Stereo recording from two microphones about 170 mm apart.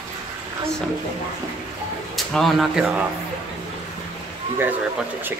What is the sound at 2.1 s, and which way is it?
Speech, centre (ahead or behind).